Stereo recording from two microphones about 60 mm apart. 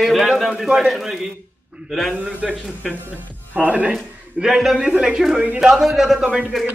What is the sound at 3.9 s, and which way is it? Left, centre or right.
A man's voice, centre.